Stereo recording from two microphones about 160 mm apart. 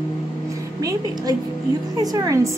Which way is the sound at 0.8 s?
20° right (ahead or behind).